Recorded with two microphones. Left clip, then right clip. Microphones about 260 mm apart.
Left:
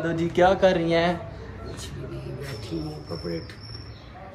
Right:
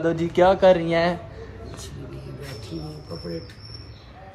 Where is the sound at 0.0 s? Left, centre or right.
Right.